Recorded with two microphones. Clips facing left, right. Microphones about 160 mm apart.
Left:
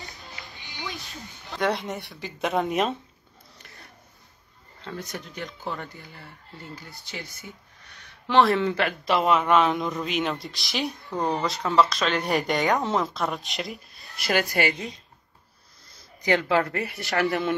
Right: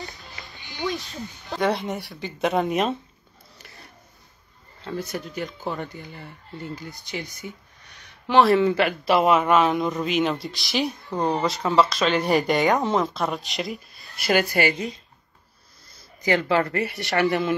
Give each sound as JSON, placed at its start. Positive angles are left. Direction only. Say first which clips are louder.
{"t": 1.6, "sound": "a man's voice", "louder": "right 2 dB", "side_deg": 0}
{"t": 4.8, "sound": "a man's voice", "louder": "right 5 dB", "side_deg": -5}
{"t": 6.7, "sound": "a man's voice", "louder": "right 5 dB", "side_deg": -20}
{"t": 16.2, "sound": "a man's voice", "louder": "right 1 dB", "side_deg": 0}